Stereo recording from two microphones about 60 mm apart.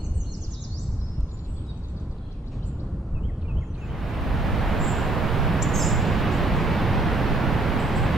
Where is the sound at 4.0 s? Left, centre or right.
Centre.